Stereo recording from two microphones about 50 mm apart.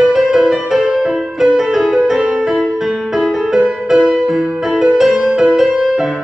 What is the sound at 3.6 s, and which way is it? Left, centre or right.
Music, centre.